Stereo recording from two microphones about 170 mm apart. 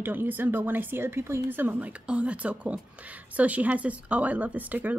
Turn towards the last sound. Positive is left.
turn(degrees=-10)  # may be behind; listen again after turning